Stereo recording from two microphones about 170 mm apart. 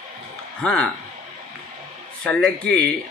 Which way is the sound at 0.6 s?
5° left (ahead or behind).